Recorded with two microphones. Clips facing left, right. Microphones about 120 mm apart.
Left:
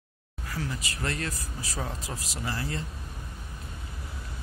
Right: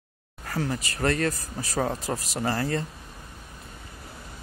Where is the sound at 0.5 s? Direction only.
50° right (ahead or behind).